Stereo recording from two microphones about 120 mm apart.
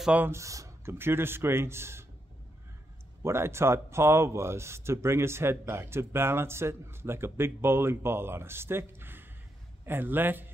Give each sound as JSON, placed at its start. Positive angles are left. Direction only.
{"t": 0.0, "sound": "speech", "side_deg": -10}
{"t": 0.3, "sound": "speech", "side_deg": -25}
{"t": 3.2, "sound": "a man's voice", "side_deg": -20}